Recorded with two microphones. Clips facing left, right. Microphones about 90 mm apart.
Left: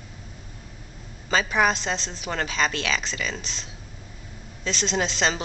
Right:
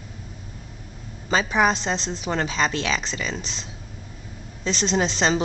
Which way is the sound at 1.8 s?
30° right (ahead or behind).